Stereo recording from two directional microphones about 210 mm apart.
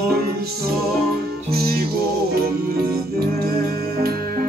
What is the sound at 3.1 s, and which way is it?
Music, 50° right (ahead or behind).